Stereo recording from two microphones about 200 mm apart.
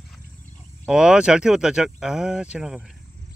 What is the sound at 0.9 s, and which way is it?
Speech, 5° right (ahead or behind).